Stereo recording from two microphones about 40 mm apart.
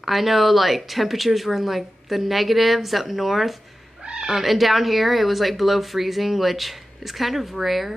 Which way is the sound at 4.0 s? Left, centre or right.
Right.